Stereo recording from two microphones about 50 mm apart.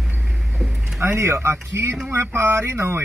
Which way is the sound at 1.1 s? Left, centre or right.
Right.